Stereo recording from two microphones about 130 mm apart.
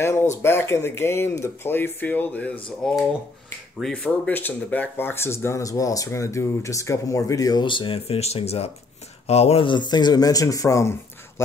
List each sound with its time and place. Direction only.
0.0 s speech: 20° left (ahead or behind)